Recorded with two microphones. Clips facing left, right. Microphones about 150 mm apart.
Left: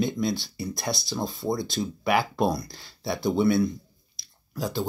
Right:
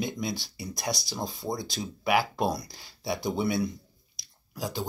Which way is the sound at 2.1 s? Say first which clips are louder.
Left 2 dB; 5° right (ahead or behind).